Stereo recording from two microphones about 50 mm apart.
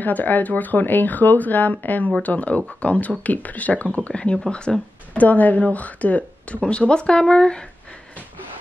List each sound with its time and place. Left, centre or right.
0.0 s speech: left; by 7.6 s centre